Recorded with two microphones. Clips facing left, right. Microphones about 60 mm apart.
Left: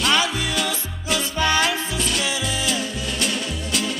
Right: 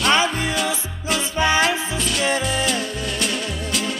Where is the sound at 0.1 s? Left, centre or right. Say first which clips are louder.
Right 2 dB; right.